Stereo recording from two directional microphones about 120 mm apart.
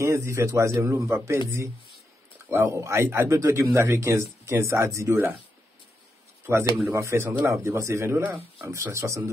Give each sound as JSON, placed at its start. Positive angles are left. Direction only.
{"t": 0.0, "sound": "speech", "side_deg": -25}
{"t": 2.5, "sound": "speech", "side_deg": -25}
{"t": 6.5, "sound": "speech", "side_deg": -20}